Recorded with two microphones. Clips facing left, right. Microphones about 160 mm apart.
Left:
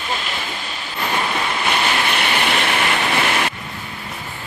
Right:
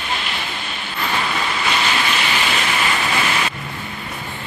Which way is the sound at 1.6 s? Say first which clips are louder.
Left 1 dB; 55° left (ahead or behind).